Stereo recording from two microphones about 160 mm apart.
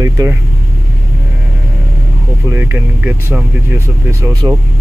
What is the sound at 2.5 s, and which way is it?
Speech, 15° right (ahead or behind).